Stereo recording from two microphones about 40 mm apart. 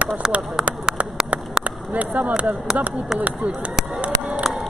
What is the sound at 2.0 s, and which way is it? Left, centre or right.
Speech, right.